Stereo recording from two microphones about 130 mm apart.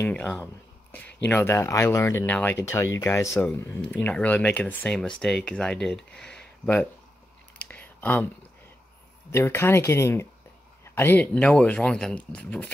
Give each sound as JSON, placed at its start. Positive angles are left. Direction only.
{"t": 0.0, "sound": "speech", "side_deg": 10}
{"t": 7.6, "sound": "a sound", "side_deg": 15}
{"t": 9.3, "sound": "speech", "side_deg": 20}